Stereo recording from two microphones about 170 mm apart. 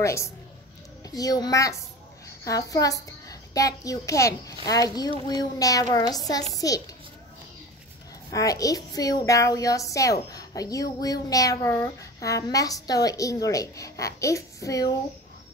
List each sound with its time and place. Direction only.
0.0 s a woman's voice: 15° left (ahead or behind)
8.3 s a child's voice: 20° left (ahead or behind)